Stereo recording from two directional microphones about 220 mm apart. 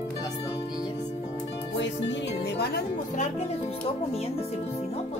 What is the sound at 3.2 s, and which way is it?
Speech, 30° left (ahead or behind).